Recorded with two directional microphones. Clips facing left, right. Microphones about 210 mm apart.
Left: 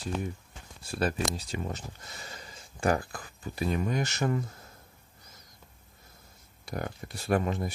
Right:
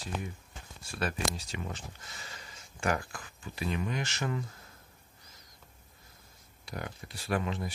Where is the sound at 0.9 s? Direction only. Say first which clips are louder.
Left 4 dB; 35° left (ahead or behind).